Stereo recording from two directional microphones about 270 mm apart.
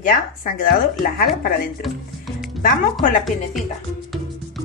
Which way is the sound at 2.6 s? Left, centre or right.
Left.